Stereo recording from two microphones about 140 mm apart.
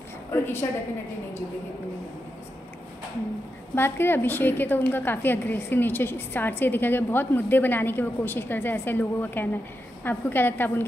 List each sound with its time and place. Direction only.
0.3 s a woman's voice: 20° left (ahead or behind)
3.7 s a woman's voice: 15° left (ahead or behind)